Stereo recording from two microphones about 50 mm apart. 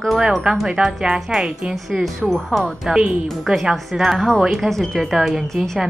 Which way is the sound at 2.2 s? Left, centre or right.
Centre.